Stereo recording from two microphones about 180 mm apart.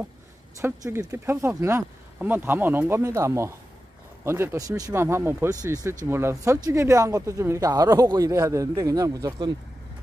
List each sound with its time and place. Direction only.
0.6 s speech: 15° right (ahead or behind)